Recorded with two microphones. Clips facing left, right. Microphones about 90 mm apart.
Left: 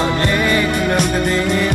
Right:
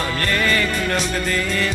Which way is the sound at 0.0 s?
20° left (ahead or behind).